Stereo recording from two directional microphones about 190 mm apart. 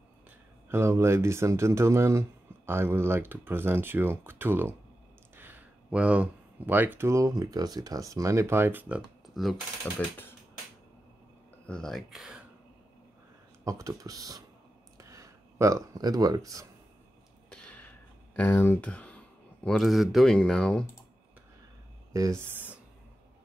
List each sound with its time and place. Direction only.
0.7 s speech: 15° right (ahead or behind)
11.6 s speech: 5° left (ahead or behind)
13.7 s speech: 15° right (ahead or behind)
15.0 s a sound: 15° right (ahead or behind)
17.5 s a sound: 5° left (ahead or behind)
22.1 s speech: 15° right (ahead or behind)